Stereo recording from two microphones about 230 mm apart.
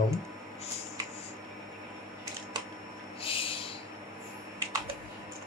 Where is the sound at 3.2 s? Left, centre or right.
Left.